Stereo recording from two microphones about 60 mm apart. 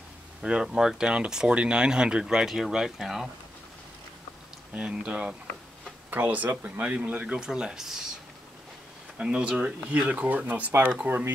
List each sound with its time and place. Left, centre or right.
0.4 s speech: centre
4.7 s speech: centre
6.0 s speech: right; by 8.1 s centre
9.2 s speech: centre; by 11.3 s right